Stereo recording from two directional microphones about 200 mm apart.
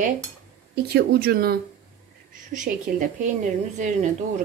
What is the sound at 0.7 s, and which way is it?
A woman's voice, 55° right (ahead or behind).